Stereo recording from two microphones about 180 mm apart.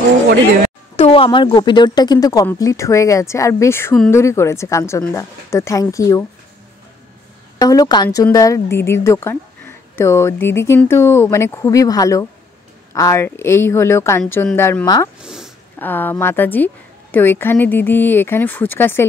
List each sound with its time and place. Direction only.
0.9 s speech: 30° left (ahead or behind)
7.6 s speech: 20° left (ahead or behind)
15.1 s a sound: 5° right (ahead or behind)
15.8 s speech: 10° left (ahead or behind)